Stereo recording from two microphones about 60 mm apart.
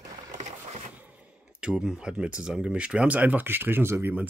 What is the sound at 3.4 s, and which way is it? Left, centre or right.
Speech, right.